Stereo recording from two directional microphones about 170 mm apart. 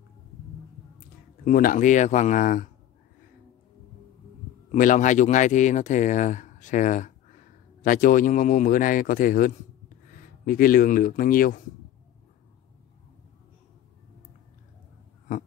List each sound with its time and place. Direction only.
1.4 s a man's voice: 55° left (ahead or behind)
4.6 s speech: 50° left (ahead or behind)